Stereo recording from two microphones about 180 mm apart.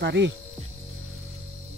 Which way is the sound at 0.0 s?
75° right (ahead or behind).